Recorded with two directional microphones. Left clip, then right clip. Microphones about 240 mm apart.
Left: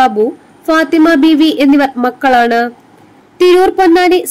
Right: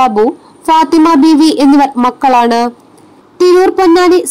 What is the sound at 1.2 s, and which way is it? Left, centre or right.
Speech, centre.